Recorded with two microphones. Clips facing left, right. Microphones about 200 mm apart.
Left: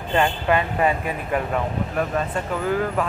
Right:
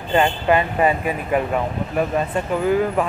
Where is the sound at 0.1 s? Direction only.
5° right (ahead or behind).